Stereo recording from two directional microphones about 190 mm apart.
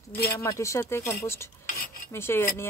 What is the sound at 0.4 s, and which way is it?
Speech, 15° left (ahead or behind).